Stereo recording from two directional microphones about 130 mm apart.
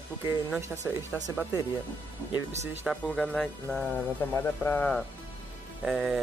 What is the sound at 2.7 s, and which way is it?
Speech, 10° right (ahead or behind).